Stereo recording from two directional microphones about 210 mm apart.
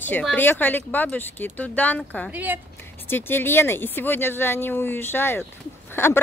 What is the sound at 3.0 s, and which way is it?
Speech, 10° left (ahead or behind).